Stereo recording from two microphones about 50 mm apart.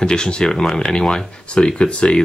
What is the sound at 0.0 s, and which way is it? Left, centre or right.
Speech, centre.